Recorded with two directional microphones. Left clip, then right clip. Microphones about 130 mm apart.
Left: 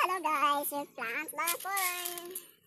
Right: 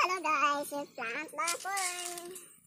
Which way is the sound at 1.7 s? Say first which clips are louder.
Left 1 dB; 25° left (ahead or behind).